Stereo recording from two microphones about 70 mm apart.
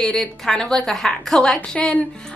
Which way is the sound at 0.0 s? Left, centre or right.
Centre.